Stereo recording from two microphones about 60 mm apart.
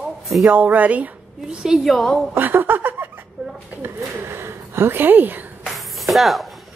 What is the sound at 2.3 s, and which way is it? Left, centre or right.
Speech, right.